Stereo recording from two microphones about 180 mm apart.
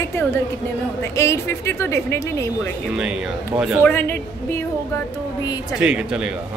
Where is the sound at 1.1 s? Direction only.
15° left (ahead or behind).